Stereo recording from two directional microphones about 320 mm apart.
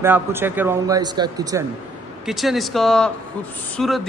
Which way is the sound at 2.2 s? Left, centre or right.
Centre.